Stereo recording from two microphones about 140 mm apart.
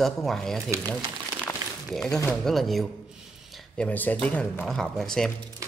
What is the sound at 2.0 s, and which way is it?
Speech, 25° left (ahead or behind).